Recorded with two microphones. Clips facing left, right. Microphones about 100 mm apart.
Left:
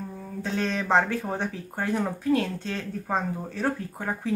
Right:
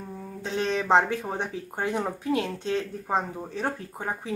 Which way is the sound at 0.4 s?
20° right (ahead or behind).